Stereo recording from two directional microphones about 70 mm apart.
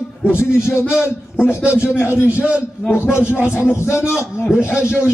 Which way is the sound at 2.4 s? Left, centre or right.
Centre.